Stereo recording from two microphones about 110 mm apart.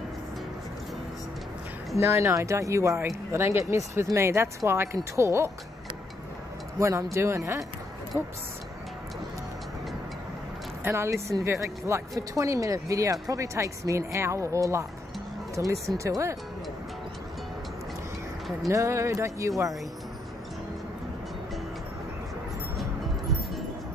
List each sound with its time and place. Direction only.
2.0 s speech: 25° right (ahead or behind)
6.8 s speech: 25° right (ahead or behind)
10.8 s speech: 25° right (ahead or behind)
18.7 s speech: 25° right (ahead or behind)